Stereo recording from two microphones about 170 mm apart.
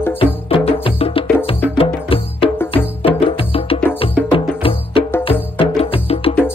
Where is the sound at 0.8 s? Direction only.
35° left (ahead or behind).